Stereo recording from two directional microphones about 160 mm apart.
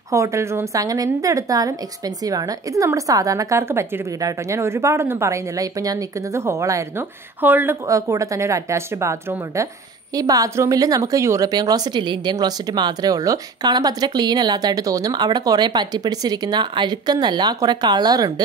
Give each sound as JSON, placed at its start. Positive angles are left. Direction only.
{"t": 0.1, "sound": "a woman's voice", "side_deg": -20}